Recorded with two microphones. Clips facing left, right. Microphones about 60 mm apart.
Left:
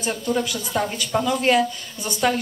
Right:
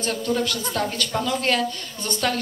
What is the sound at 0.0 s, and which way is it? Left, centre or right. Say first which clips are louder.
A woman's voice: even; centre.